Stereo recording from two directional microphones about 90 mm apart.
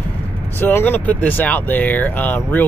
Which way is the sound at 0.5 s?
20° left (ahead or behind).